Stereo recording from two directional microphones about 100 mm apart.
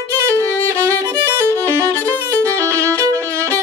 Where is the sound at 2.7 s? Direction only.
30° right (ahead or behind).